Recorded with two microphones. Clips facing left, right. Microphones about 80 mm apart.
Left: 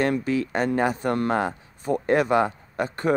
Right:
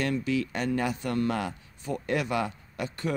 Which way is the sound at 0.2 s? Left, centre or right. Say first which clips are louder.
Left 5 dB; left.